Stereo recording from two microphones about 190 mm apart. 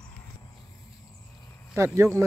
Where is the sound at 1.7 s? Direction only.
15° right (ahead or behind).